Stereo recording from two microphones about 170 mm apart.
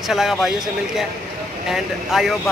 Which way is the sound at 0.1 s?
Centre (ahead or behind).